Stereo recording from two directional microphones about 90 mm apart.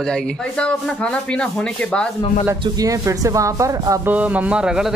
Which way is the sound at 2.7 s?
40° right (ahead or behind).